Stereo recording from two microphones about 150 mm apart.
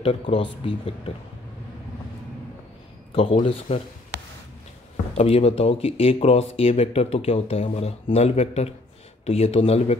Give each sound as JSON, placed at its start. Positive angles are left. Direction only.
{"t": 0.0, "sound": "speech", "side_deg": 40}
{"t": 3.4, "sound": "speech", "side_deg": 40}
{"t": 5.1, "sound": "speech", "side_deg": 40}